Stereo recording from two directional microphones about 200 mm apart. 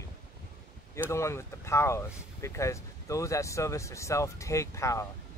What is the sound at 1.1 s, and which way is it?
Speech, 15° left (ahead or behind).